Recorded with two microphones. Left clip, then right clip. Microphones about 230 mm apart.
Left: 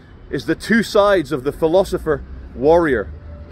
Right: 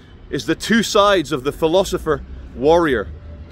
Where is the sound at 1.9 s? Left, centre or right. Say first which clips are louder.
Even; centre.